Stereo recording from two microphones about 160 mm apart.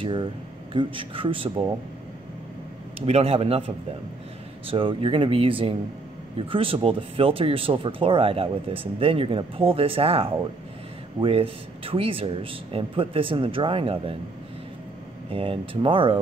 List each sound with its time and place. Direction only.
0.0 s speech: 30° right (ahead or behind)
3.1 s speech: 40° right (ahead or behind)
15.2 s speech: 35° right (ahead or behind)